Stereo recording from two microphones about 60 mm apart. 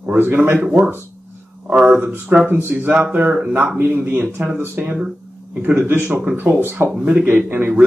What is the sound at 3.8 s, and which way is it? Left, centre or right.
Speech, right.